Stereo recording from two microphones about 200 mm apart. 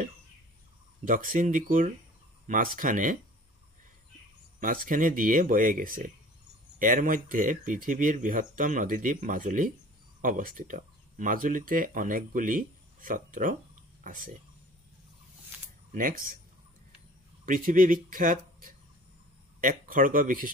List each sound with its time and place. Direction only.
1.0 s speech: 40° right (ahead or behind)
4.6 s speech: 45° right (ahead or behind)
15.9 s speech: 45° right (ahead or behind)
17.5 s speech: 45° right (ahead or behind)